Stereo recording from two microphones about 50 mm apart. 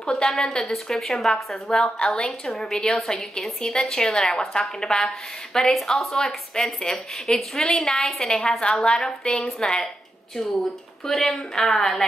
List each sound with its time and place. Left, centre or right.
0.3 s a woman's voice: centre
1.8 s a woman's voice: centre
2.4 s a woman's voice: centre
5.7 s a woman's voice: centre
9.4 s a woman's voice: centre